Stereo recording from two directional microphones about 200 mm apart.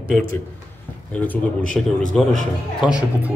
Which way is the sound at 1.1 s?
10° left (ahead or behind).